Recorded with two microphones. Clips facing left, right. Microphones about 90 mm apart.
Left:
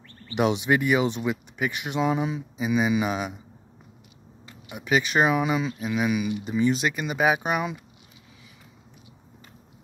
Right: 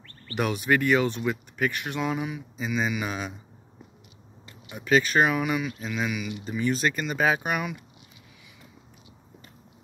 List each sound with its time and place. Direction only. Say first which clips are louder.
0.3 s speech: left 2 dB; 20° left (ahead or behind)
2.5 s mantra: left 4 dB; 15° left (ahead or behind)
2.9 s speech: left 6 dB; 20° left (ahead or behind)
4.6 s speech: right 2 dB; 15° left (ahead or behind)